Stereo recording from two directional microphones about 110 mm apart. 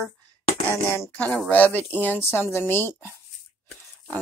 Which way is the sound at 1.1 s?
10° left (ahead or behind).